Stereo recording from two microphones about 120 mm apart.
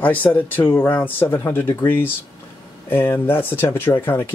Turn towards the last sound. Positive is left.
turn(degrees=20)  # may be behind; listen again after turning